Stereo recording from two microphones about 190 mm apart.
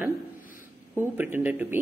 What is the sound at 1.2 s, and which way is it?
Speech, 10° right (ahead or behind).